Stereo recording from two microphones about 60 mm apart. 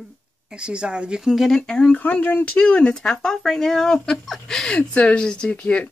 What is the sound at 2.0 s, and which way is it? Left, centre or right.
Speech, left.